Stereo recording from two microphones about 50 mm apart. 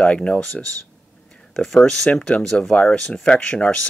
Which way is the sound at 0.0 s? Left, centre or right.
Left.